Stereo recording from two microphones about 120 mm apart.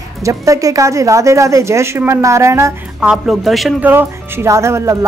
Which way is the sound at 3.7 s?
15° right (ahead or behind).